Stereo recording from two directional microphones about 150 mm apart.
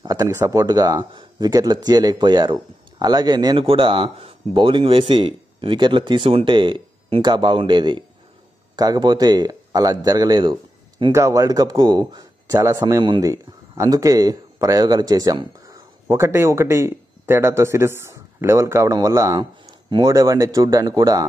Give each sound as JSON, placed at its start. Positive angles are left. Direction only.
{"t": 0.0, "sound": "speech", "side_deg": -25}
{"t": 11.1, "sound": "speech", "side_deg": -20}